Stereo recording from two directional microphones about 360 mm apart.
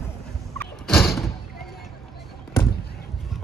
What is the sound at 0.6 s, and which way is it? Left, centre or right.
Turkey, centre.